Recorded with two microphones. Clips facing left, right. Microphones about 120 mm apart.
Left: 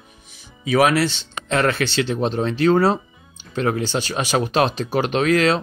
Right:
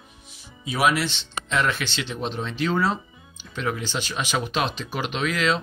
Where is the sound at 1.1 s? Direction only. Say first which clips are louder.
Left 5 dB; 40° left (ahead or behind).